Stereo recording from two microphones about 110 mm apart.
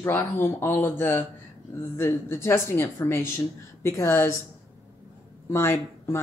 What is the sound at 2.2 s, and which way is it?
Speech, 25° left (ahead or behind).